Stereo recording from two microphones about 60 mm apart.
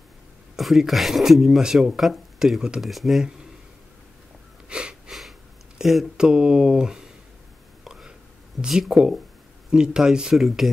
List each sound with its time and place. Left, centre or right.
0.6 s speech: centre
4.6 s sniff: centre
5.8 s a sound: centre
6.1 s speech: centre
7.8 s whispering: centre
8.6 s speech: centre